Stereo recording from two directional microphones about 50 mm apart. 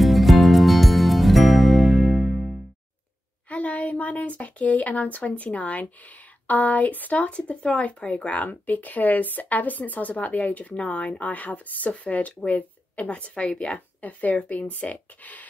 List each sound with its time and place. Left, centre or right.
0.0 s music: centre
3.4 s a woman's voice: left